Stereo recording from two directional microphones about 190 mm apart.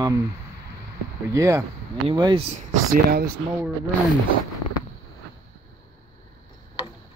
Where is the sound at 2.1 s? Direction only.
25° right (ahead or behind).